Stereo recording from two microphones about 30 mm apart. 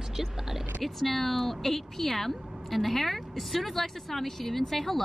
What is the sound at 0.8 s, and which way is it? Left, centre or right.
Speech, centre.